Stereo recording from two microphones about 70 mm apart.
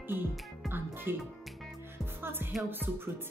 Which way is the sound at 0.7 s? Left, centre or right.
Right.